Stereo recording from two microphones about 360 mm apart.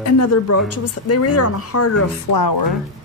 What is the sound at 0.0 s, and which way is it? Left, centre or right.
A woman's voice, left.